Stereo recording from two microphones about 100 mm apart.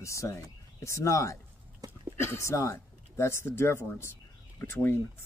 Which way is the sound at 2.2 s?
25° left (ahead or behind).